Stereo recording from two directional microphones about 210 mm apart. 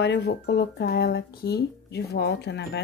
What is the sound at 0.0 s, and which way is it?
A woman's voice, 55° left (ahead or behind).